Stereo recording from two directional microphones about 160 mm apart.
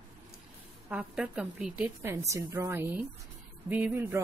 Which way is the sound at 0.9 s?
5° right (ahead or behind).